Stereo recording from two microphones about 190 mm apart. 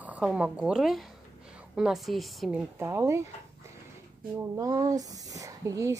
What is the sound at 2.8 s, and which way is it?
Speech, 15° right (ahead or behind).